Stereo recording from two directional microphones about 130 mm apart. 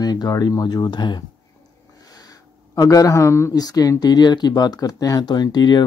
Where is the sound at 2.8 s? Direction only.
25° left (ahead or behind).